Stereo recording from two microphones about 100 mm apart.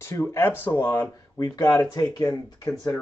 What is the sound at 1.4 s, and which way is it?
Speech, 40° left (ahead or behind).